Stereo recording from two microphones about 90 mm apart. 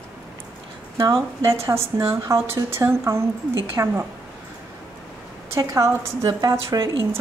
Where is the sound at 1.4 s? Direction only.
35° right (ahead or behind).